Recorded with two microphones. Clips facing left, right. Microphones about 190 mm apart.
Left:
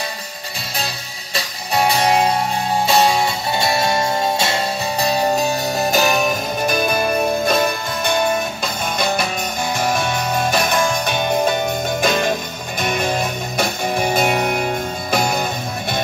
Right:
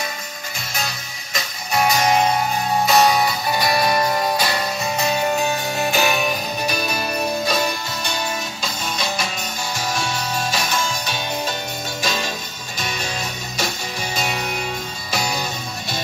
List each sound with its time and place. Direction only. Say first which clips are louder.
1.3 s music: left 2 dB; 30° left (ahead or behind); by 15.4 s 55° left (ahead or behind)